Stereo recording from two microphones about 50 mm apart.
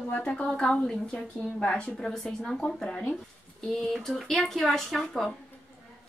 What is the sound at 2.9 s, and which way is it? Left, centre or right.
Speech, left.